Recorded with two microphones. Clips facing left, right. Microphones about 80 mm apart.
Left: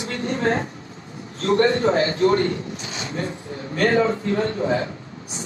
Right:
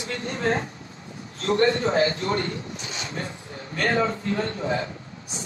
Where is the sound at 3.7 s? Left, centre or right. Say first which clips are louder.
Left 5 dB; left.